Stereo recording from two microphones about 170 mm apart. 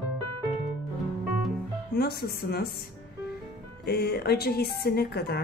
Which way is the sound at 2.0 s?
70° left (ahead or behind).